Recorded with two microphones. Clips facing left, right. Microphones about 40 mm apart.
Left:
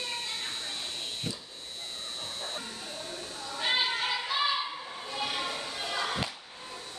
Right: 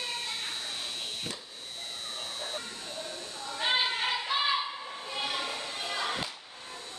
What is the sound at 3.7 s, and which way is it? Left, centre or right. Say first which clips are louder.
Choir: even; centre.